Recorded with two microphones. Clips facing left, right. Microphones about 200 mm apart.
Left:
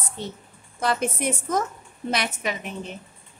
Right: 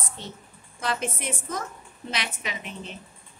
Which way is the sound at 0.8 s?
45° left (ahead or behind).